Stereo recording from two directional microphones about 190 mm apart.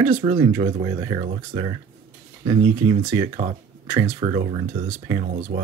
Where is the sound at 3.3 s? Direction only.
30° right (ahead or behind).